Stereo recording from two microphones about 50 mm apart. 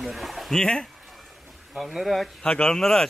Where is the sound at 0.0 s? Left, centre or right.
Centre.